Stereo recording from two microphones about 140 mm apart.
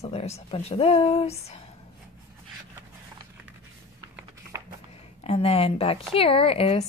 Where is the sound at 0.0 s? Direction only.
45° left (ahead or behind).